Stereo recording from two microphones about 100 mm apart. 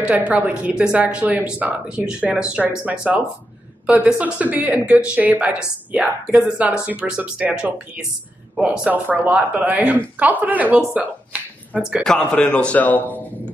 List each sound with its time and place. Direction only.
0.0 s a woman's voice: 15° right (ahead or behind)
10.9 s a sound: 15° right (ahead or behind)
12.0 s a man's voice: 10° left (ahead or behind)